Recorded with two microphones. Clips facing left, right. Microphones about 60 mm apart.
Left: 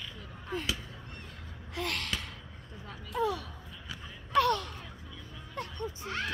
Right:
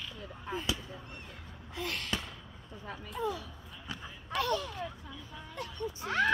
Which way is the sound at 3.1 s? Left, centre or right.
Left.